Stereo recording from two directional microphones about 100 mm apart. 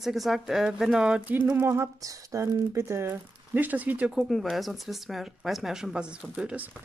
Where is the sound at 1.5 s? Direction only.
25° right (ahead or behind).